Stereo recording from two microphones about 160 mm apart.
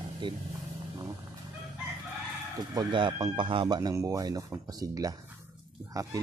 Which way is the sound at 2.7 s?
30° right (ahead or behind).